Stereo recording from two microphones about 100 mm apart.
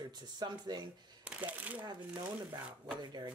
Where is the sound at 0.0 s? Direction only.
45° right (ahead or behind).